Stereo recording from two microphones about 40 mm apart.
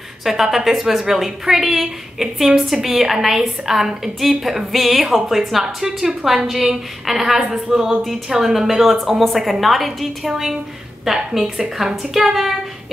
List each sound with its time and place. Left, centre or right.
0.2 s a woman's voice: centre